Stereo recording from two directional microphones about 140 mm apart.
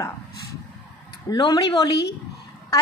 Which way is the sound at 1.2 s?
25° left (ahead or behind).